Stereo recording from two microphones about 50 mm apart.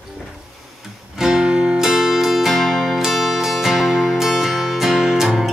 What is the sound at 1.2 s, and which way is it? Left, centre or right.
Music, centre.